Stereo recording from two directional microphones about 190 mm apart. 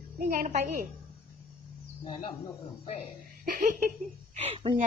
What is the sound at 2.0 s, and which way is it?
Speech, 25° left (ahead or behind).